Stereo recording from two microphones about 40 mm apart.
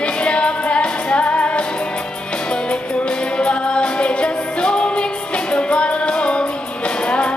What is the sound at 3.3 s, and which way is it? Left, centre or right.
Music, left.